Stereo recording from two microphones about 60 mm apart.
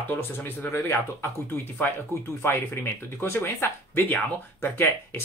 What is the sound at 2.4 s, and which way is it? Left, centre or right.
Speech, left.